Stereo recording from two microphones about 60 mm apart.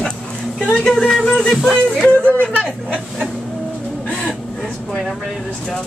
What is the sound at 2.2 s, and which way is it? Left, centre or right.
Speech, left.